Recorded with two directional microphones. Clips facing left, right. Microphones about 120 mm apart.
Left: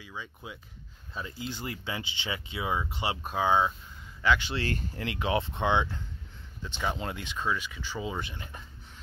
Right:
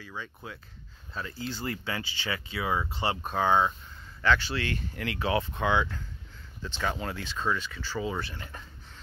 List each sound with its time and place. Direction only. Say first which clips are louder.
0.0 s speech: right 1 dB; 15° left (ahead or behind)
4.6 s speech: left 1 dB; 40° left (ahead or behind)
4.9 s speech: right 2 dB; 25° left (ahead or behind)
6.6 s speech: right 1 dB; 15° left (ahead or behind)